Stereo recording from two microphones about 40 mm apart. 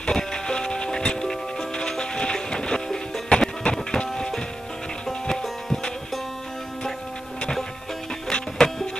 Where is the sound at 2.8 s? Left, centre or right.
Centre.